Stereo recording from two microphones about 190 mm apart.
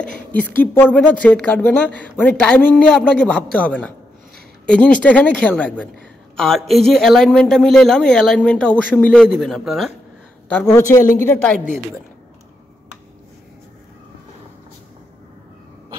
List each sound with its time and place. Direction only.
0.0 s a woman's voice: 10° left (ahead or behind)
10.7 s a woman's voice: 15° left (ahead or behind)